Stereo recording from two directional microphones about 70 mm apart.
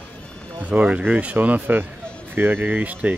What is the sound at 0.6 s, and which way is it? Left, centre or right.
Speech, right.